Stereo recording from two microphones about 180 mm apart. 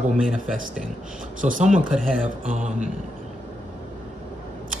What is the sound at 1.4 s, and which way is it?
Speech, 45° right (ahead or behind).